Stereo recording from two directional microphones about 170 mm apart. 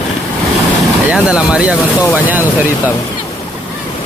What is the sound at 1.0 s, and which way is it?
Speech, 5° right (ahead or behind).